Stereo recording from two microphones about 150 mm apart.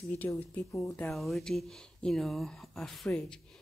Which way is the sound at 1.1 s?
Centre (ahead or behind).